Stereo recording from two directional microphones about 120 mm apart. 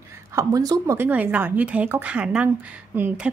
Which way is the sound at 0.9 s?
15° right (ahead or behind).